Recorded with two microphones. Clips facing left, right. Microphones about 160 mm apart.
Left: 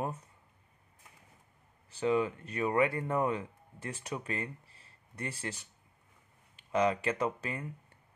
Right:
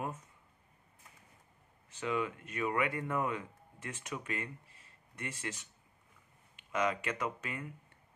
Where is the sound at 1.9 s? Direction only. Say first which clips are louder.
Left 6 dB; 35° left (ahead or behind).